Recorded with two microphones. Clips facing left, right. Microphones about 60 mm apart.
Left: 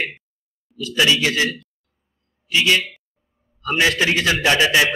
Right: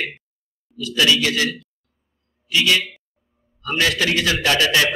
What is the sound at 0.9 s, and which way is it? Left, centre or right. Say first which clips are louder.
A man's voice: even; left.